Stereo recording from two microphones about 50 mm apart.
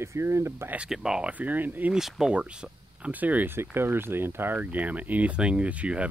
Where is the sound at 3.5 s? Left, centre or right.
Right.